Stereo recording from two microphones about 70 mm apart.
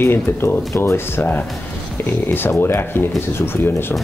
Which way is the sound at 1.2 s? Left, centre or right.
Left.